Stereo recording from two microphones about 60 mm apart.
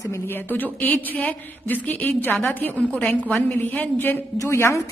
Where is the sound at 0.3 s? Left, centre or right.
Left.